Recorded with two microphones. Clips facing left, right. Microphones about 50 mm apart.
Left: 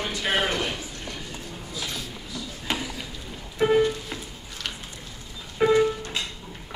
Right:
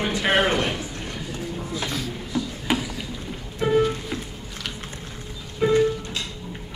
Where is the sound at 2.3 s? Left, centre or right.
Right.